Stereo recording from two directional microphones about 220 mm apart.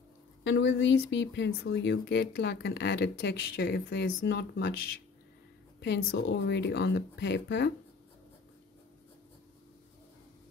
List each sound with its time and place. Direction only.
0.4 s speech: 60° left (ahead or behind)
5.8 s speech: 55° left (ahead or behind)